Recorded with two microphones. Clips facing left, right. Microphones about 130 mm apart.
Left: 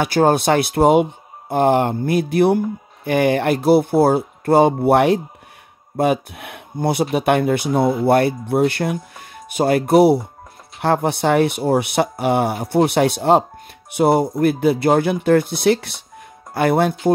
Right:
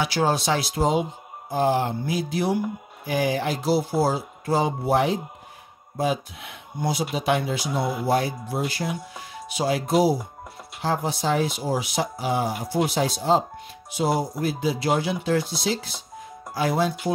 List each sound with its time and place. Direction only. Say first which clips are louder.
0.0 s speech: left 7 dB; 55° left (ahead or behind)